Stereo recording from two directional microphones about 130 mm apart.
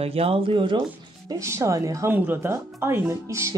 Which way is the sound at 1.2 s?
25° right (ahead or behind).